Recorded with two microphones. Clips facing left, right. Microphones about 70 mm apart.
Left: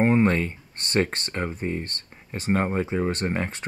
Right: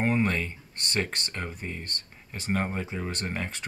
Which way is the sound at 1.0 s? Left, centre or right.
Left.